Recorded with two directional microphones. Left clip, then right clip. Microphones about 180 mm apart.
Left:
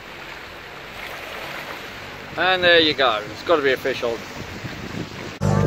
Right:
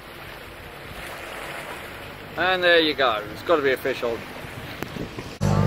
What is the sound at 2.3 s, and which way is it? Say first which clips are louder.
Speech: left 3 dB; 5° left (ahead or behind).